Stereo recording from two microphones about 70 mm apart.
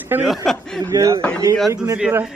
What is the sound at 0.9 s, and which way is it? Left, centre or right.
Speech, right.